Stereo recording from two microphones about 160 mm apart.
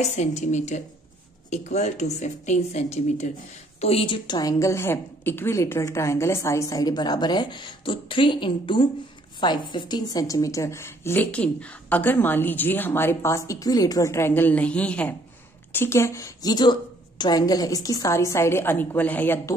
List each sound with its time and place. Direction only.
0.0 s a woman's voice: 45° left (ahead or behind); by 19.5 s 15° left (ahead or behind)